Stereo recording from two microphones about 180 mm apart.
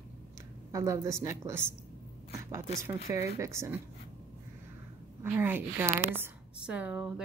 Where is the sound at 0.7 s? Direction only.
15° right (ahead or behind).